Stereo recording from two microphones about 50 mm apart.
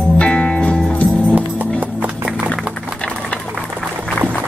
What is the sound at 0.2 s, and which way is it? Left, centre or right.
Music, left.